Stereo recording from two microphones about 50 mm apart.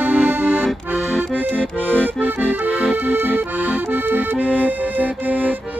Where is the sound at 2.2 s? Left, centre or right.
Right.